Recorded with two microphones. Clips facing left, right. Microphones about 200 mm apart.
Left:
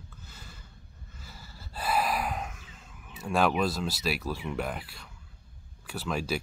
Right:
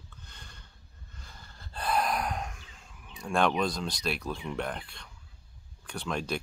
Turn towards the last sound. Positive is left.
turn(degrees=5)  # may be behind; listen again after turning